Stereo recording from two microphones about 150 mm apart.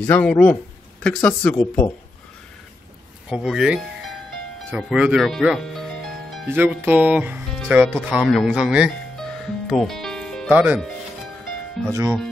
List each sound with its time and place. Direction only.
0.0 s speech: 10° left (ahead or behind)
3.3 s speech: 5° right (ahead or behind)
4.8 s speech: 5° right (ahead or behind)
9.7 s music: centre (ahead or behind)
10.5 s speech: 10° right (ahead or behind)
11.9 s speech: 20° right (ahead or behind)